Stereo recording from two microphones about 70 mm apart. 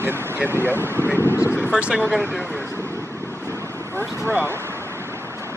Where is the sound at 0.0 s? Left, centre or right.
Right.